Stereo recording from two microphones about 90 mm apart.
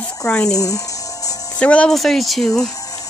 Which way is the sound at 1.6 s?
15° left (ahead or behind).